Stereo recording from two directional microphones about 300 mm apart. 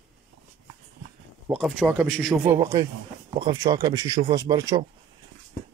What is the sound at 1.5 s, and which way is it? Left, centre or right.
Speech, centre.